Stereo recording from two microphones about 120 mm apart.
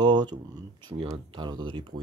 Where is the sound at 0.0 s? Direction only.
35° right (ahead or behind).